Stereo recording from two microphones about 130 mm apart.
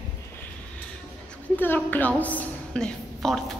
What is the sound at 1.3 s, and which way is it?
A woman's voice, 15° left (ahead or behind).